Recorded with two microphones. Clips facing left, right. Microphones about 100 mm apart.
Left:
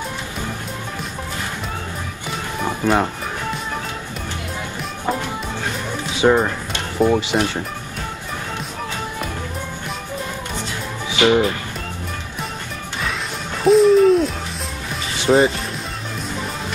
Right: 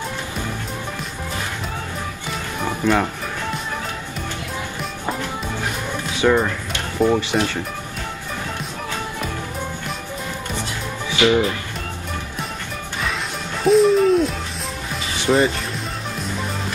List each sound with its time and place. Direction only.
2.6 s music: 20° left (ahead or behind)
6.2 s speech: 25° left (ahead or behind)
11.1 s speech: 20° left (ahead or behind)
13.7 s music: centre (ahead or behind)
15.3 s speech: 40° left (ahead or behind)